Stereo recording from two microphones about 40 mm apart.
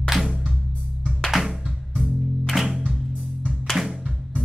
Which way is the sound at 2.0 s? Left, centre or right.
Centre.